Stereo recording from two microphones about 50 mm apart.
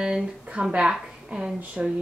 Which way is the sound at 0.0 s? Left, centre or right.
Centre.